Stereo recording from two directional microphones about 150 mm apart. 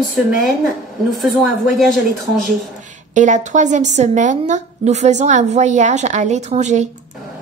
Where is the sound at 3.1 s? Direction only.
55° right (ahead or behind).